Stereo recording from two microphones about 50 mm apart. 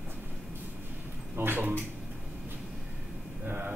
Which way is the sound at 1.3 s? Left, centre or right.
Right.